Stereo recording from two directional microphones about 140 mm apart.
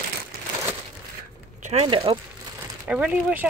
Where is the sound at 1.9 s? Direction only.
40° right (ahead or behind).